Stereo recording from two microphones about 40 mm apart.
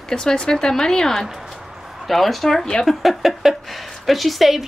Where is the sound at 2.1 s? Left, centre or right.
Centre.